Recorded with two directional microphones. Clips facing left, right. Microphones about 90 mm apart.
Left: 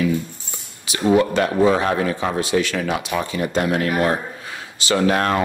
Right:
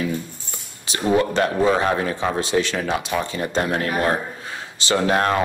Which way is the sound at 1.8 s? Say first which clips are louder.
Left 1 dB; 30° right (ahead or behind).